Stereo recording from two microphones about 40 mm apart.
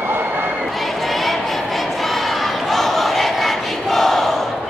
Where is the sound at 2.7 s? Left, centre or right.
Centre.